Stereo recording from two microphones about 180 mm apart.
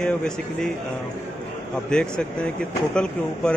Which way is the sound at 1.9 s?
5° left (ahead or behind).